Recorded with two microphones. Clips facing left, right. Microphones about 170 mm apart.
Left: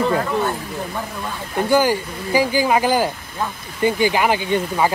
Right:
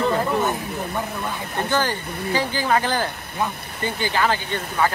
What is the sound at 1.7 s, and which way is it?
Speech, 10° left (ahead or behind).